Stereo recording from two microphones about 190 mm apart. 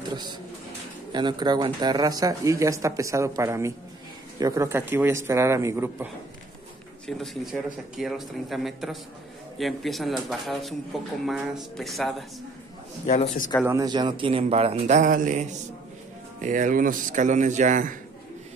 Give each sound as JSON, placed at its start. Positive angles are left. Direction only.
{"t": 0.1, "sound": "pigeon", "side_deg": -25}
{"t": 1.1, "sound": "speech", "side_deg": -25}
{"t": 7.1, "sound": "speech", "side_deg": 0}
{"t": 13.0, "sound": "a man's voice", "side_deg": 40}
{"t": 13.7, "sound": "speech", "side_deg": -20}